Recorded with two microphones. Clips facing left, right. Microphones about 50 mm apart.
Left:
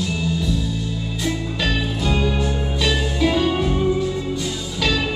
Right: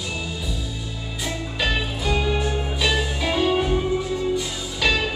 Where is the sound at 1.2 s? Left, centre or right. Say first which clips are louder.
Left 2 dB; centre.